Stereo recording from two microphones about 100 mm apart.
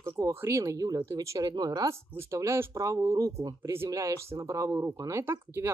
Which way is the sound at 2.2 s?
30° right (ahead or behind).